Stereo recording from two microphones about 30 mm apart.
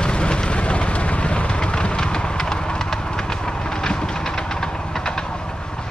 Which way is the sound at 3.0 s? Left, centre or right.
Left.